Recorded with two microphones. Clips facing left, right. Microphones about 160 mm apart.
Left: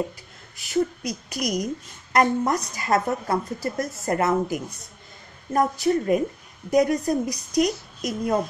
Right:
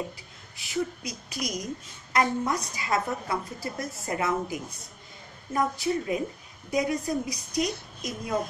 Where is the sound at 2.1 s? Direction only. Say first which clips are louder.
Left 5 dB; 50° left (ahead or behind).